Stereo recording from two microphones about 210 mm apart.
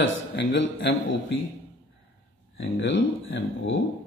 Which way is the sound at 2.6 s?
60° left (ahead or behind).